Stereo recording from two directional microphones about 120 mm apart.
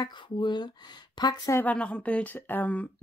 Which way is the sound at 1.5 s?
15° left (ahead or behind).